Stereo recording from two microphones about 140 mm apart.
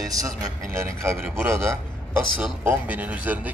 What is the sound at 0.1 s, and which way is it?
Speech, 25° right (ahead or behind).